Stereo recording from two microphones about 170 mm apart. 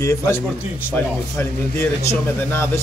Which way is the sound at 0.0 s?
20° left (ahead or behind).